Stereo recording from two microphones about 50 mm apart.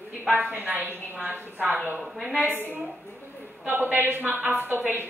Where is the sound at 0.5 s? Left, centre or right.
Right.